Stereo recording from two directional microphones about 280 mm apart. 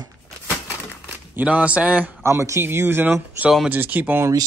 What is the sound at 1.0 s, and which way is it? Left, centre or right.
Speech, centre.